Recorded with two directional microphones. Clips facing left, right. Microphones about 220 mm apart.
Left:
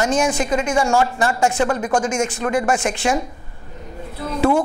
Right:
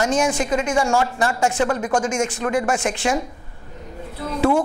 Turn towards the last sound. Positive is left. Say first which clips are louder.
# left 1 dB
turn(degrees=20)  # may be behind; listen again after turning